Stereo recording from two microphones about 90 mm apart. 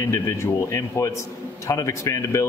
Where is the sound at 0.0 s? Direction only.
30° left (ahead or behind).